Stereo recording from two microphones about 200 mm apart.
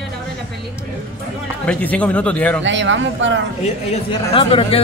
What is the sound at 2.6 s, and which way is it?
Speech, 65° right (ahead or behind).